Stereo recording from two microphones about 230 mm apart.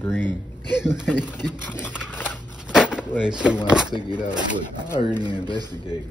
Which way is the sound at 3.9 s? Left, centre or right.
Centre.